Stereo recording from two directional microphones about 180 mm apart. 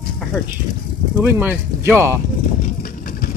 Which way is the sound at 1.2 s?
10° right (ahead or behind).